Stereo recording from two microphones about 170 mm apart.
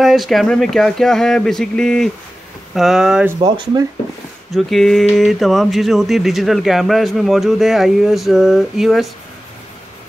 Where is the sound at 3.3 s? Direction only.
25° right (ahead or behind).